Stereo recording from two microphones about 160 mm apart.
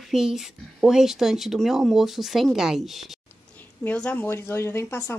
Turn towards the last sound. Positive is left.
turn(degrees=15)  # may be behind; listen again after turning